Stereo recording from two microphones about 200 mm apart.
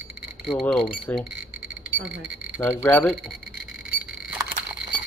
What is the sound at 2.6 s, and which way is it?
Speech, 10° left (ahead or behind).